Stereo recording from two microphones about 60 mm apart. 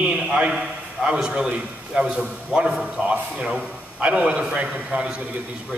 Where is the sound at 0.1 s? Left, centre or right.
Centre.